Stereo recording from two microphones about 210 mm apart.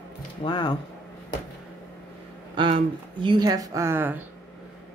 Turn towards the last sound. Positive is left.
turn(degrees=-10)  # may be behind; listen again after turning